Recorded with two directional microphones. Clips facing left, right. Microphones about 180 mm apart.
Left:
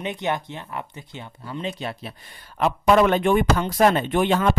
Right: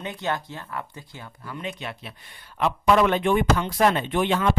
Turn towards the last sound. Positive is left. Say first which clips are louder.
# left 2 dB
turn(degrees=45)  # may be behind; listen again after turning